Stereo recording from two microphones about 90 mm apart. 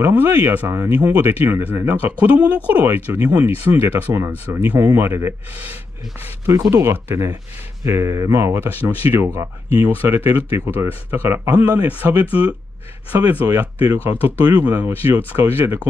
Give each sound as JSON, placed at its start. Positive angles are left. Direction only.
{"t": 0.0, "sound": "speech", "side_deg": -25}